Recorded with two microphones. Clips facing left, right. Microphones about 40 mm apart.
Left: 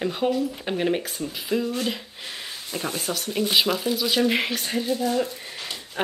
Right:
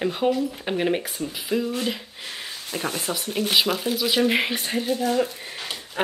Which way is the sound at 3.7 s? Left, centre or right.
Right.